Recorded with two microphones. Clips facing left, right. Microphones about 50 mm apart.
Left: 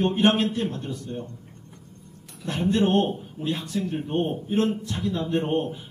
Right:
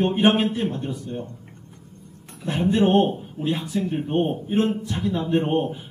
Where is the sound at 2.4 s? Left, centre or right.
Centre.